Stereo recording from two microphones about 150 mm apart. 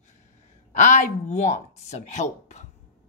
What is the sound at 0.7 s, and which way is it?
A woman's voice, 50° left (ahead or behind).